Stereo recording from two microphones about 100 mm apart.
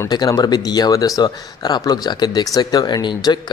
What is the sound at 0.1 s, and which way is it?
Speech, 40° left (ahead or behind).